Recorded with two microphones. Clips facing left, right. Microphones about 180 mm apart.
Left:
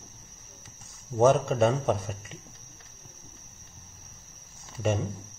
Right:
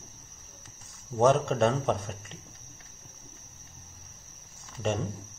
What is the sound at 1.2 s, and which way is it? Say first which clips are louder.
Speech: left 2 dB; 5° left (ahead or behind).